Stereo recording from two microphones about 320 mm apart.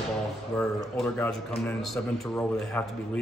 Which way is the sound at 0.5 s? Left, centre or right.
Centre.